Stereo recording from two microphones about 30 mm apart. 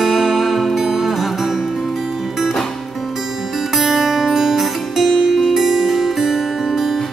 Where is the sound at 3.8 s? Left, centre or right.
Centre.